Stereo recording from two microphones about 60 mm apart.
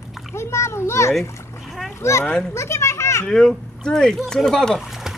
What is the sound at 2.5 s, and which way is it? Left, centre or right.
Children playing, left.